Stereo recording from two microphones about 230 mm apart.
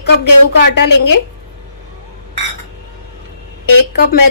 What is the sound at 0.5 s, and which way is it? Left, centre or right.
Speech, left.